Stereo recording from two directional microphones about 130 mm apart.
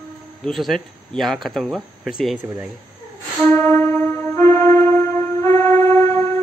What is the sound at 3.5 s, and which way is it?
Music, 15° left (ahead or behind).